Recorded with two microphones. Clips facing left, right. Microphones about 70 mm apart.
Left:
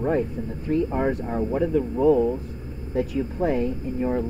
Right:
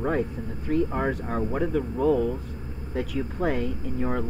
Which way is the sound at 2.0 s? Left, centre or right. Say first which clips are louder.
Left 4 dB; left.